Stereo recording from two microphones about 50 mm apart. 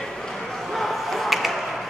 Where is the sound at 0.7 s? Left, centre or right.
Centre.